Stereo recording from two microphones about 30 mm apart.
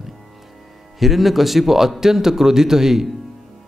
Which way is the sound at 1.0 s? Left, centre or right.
Centre.